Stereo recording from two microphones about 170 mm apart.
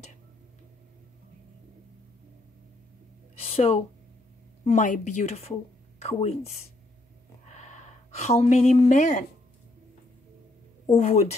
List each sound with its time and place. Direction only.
3.4 s speech: 35° left (ahead or behind)
4.6 s speech: 50° left (ahead or behind)
7.5 s a woman's voice: 45° left (ahead or behind)
11.0 s a woman's voice: 40° left (ahead or behind)